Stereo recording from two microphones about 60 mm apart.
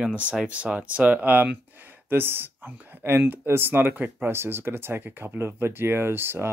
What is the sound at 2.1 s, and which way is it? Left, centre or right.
Speech, right.